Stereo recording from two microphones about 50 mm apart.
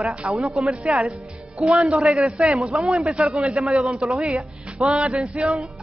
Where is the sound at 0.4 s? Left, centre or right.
Centre.